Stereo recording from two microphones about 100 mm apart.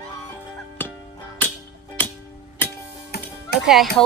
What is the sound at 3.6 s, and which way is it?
Speech, centre (ahead or behind).